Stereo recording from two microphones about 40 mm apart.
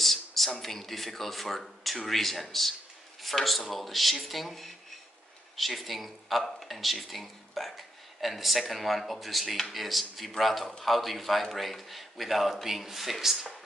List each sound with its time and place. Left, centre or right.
0.0 s speech: centre